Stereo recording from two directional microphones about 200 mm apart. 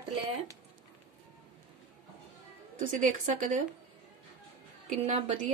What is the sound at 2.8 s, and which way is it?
Speech, 40° right (ahead or behind).